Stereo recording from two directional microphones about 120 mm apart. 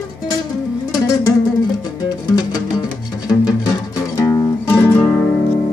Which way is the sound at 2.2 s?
30° left (ahead or behind).